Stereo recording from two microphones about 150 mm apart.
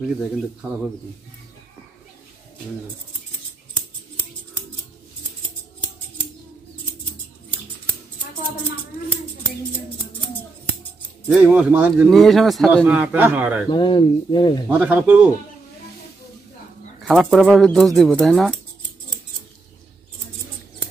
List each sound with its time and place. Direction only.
11.2 s a man's voice: 10° right (ahead or behind)
12.8 s a man's voice: 10° right (ahead or behind)
13.7 s speech: 30° left (ahead or behind)
14.7 s a man's voice: 10° right (ahead or behind)
17.1 s a man's voice: 5° right (ahead or behind)